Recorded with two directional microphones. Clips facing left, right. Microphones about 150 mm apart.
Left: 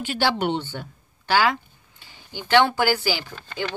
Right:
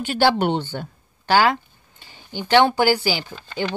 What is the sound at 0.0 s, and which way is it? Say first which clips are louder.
Speech: right 5 dB; 35° right (ahead or behind).